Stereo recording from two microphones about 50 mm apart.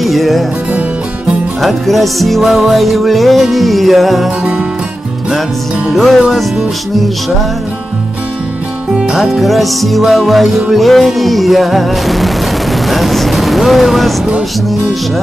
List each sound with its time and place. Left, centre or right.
0.0 s music: centre
1.6 s music: centre
5.9 s music: centre
8.9 s music: centre
9.3 s music: centre
12.8 s speech: centre